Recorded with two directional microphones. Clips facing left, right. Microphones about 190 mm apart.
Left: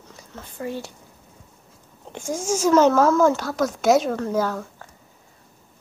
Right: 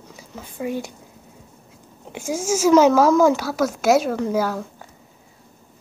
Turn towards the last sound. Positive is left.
turn(degrees=-10)  # may be behind; listen again after turning